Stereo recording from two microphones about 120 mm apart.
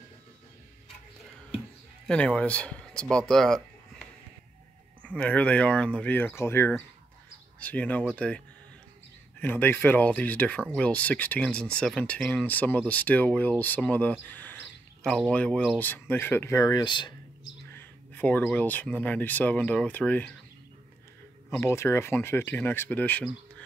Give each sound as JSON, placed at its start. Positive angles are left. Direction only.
{"t": 2.0, "sound": "speech", "side_deg": 10}
{"t": 9.4, "sound": "speech", "side_deg": 15}
{"t": 14.2, "sound": "cricket", "side_deg": 15}
{"t": 15.0, "sound": "speech", "side_deg": 5}
{"t": 17.7, "sound": "speech", "side_deg": 15}
{"t": 21.5, "sound": "speech", "side_deg": 20}